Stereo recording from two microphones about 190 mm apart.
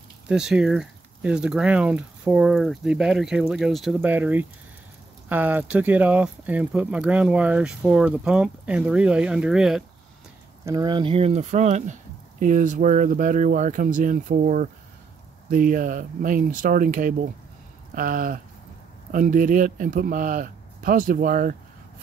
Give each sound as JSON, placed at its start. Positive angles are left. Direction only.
{"t": 0.3, "sound": "speech", "side_deg": -5}
{"t": 10.6, "sound": "speech", "side_deg": -20}